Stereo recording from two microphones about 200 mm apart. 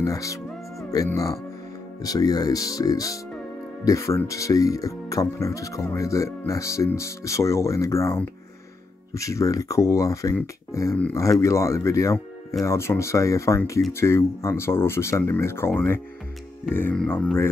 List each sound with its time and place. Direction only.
0.0 s music: 15° left (ahead or behind)
2.0 s speech: 20° left (ahead or behind)